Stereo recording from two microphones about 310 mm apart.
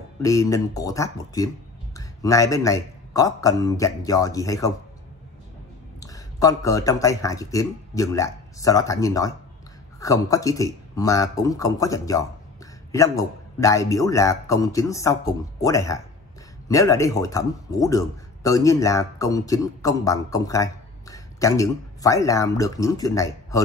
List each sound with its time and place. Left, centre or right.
0.2 s speech: centre
5.9 s speech: centre